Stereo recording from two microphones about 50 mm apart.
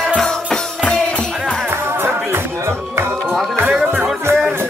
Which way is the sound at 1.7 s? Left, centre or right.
Right.